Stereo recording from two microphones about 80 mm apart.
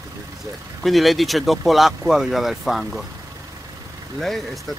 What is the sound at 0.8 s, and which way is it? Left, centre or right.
Speech, centre.